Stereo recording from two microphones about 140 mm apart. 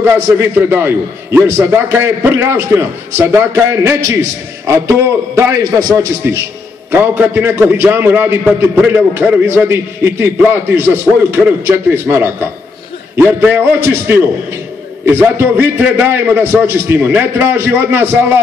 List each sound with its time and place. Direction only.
0.0 s a man's voice: 15° right (ahead or behind)